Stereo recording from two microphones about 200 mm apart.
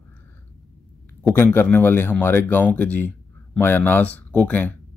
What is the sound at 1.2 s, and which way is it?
Speech, 10° left (ahead or behind).